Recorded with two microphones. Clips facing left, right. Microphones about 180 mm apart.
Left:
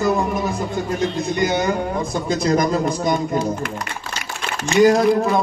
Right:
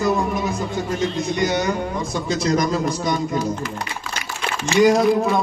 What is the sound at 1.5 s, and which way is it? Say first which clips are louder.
Speech: left 2 dB; 55° left (ahead or behind).